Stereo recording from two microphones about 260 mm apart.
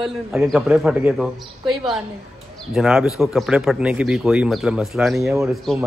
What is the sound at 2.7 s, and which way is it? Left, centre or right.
Speech, centre.